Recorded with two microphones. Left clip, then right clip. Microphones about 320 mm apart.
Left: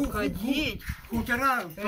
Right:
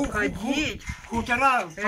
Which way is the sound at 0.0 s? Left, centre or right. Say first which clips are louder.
Right 4 dB; centre.